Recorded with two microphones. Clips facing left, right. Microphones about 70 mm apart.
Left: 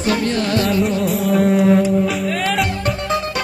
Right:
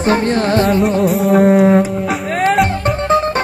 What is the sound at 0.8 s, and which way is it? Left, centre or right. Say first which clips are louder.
Music: right 4 dB; right.